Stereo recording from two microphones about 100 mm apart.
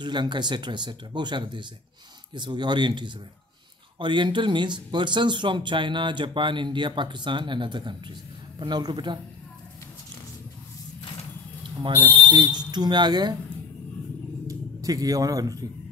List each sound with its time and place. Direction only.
0.0 s speech: 50° right (ahead or behind)
11.8 s speech: 55° right (ahead or behind)
14.5 s a man's voice: 35° right (ahead or behind)